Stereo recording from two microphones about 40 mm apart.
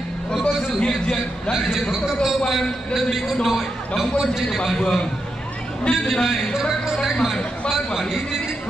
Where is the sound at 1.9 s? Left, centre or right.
Centre.